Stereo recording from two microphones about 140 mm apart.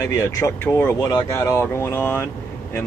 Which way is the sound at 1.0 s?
25° left (ahead or behind).